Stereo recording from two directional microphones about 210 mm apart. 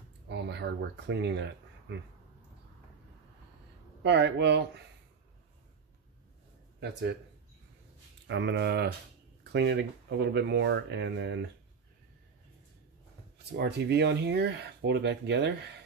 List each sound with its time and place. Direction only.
0.3 s speech: 55° right (ahead or behind)
4.0 s speech: 55° right (ahead or behind)
6.8 s speech: 55° right (ahead or behind)
8.3 s speech: 55° right (ahead or behind)
13.5 s speech: 50° right (ahead or behind)